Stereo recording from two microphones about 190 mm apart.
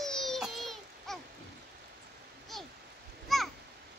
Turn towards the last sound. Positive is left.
turn(degrees=0)  # may be behind; listen again after turning